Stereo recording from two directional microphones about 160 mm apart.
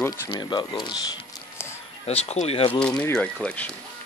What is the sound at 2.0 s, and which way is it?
Speech, 40° left (ahead or behind).